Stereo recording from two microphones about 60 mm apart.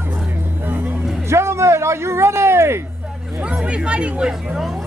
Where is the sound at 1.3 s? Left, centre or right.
Right.